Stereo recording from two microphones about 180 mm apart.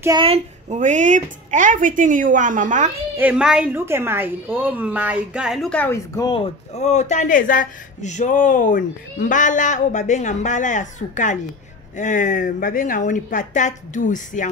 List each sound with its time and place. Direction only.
0.2 s speech: 35° right (ahead or behind)
3.2 s a woman's voice: 5° right (ahead or behind)
6.1 s speech: 25° left (ahead or behind); by 14.5 s 45° left (ahead or behind)